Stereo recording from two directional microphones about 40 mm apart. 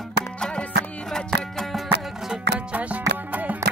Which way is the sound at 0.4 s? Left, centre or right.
Left.